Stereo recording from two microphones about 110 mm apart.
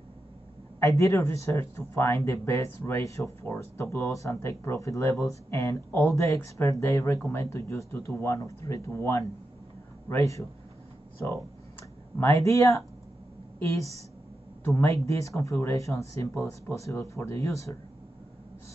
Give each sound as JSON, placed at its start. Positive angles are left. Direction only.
{"t": 0.7, "sound": "speech", "side_deg": 30}
{"t": 12.2, "sound": "speech", "side_deg": 25}